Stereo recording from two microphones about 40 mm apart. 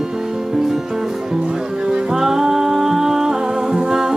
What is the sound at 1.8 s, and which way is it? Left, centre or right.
Music, centre.